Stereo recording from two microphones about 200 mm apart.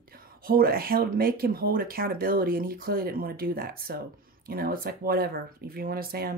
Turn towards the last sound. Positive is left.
turn(degrees=-50)  # may be behind; listen again after turning